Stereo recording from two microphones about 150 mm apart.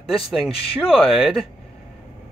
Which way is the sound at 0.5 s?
40° left (ahead or behind).